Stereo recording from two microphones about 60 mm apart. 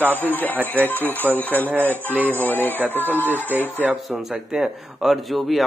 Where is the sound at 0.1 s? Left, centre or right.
Left.